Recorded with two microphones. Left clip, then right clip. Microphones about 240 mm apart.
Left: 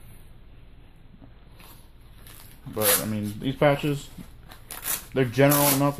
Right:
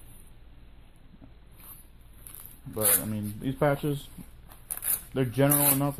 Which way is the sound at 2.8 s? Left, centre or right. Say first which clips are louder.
Left 6 dB; right.